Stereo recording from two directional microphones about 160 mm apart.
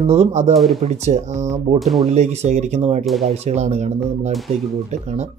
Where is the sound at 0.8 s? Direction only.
45° right (ahead or behind).